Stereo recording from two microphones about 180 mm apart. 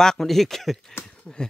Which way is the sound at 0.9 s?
5° left (ahead or behind).